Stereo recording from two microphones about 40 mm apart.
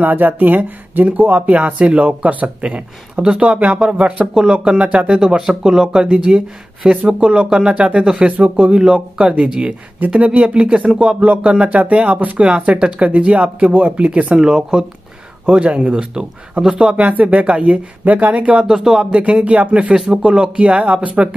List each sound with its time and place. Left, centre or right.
0.0 s speech: right
1.8 s speech: right
5.2 s speech: centre
8.7 s speech: centre
14.4 s speech: centre
15.5 s speech: right
16.9 s speech: right
18.7 s speech: centre
19.1 s speech: right
20.0 s speech: centre
20.5 s speech: right